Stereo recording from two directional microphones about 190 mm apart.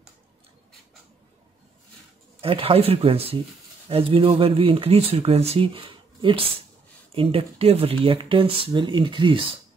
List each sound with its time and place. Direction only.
2.4 s speech: 30° right (ahead or behind)